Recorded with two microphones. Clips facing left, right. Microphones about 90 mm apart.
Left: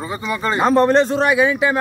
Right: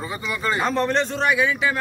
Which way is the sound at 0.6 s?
45° left (ahead or behind).